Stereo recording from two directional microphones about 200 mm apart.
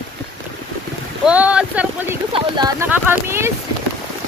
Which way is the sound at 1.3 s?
5° right (ahead or behind).